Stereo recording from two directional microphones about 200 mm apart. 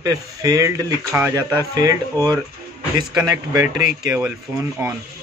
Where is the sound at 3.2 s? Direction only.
15° right (ahead or behind).